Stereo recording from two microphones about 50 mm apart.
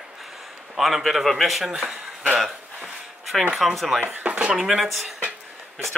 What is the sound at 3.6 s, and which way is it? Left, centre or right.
Speech, centre.